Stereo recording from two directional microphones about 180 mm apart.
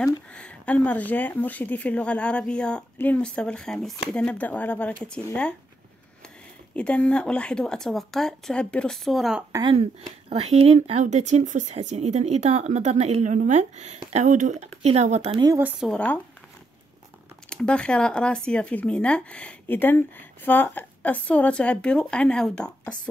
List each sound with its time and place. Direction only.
0.0 s speech: 5° left (ahead or behind)
6.7 s speech: 5° left (ahead or behind)
9.5 s speech: 25° right (ahead or behind)
10.3 s speech: 35° right (ahead or behind)
15.4 s speech: 15° right (ahead or behind)
15.8 s speech: 5° left (ahead or behind)
17.5 s speech: 5° left (ahead or behind)